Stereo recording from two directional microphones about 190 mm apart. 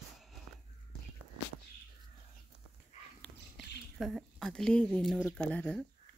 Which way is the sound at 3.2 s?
Centre (ahead or behind).